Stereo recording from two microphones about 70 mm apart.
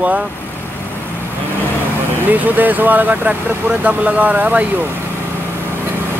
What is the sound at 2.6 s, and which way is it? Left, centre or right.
Speech, right.